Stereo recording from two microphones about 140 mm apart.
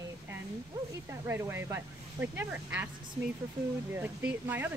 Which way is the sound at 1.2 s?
15° right (ahead or behind).